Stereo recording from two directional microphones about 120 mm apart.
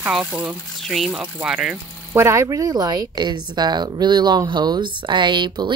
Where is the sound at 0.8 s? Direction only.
5° left (ahead or behind).